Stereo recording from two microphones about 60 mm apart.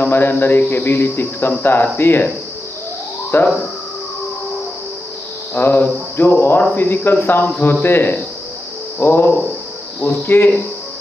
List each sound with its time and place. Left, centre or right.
0.0 s speech: left
3.3 s speech: left
5.5 s speech: left